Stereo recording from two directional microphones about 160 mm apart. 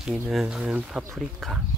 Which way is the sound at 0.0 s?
Centre (ahead or behind).